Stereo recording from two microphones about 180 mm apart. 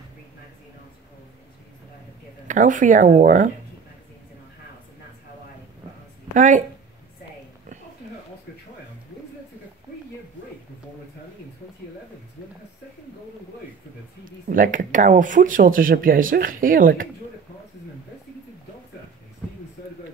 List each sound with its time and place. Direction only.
2.4 s speech: 45° right (ahead or behind)
6.3 s speech: 45° right (ahead or behind)
14.2 s speech: 50° right (ahead or behind)